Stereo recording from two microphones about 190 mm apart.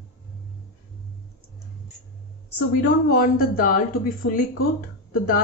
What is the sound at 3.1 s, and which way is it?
A woman's voice, 45° left (ahead or behind).